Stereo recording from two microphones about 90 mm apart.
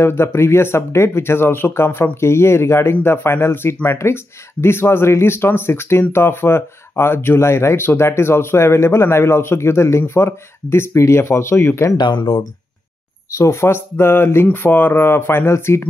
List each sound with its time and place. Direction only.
0.0 s speech: 25° left (ahead or behind)
12.0 s speech: 55° left (ahead or behind)
13.3 s speech: 30° left (ahead or behind)